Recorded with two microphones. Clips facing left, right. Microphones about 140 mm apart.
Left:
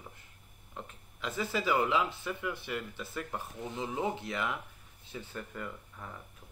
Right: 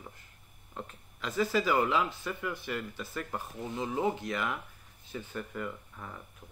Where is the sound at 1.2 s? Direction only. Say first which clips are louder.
Right 4 dB; 20° left (ahead or behind).